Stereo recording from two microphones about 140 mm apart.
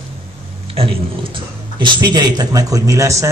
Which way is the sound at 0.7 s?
40° right (ahead or behind).